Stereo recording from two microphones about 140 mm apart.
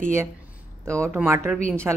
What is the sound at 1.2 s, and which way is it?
Speech, 20° right (ahead or behind).